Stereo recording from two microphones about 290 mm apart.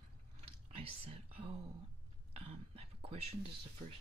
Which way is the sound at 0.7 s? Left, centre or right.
Right.